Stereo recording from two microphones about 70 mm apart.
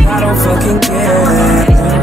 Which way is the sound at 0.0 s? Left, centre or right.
Centre.